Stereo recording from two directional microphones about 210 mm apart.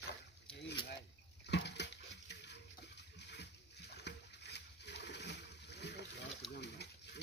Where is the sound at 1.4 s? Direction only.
55° left (ahead or behind).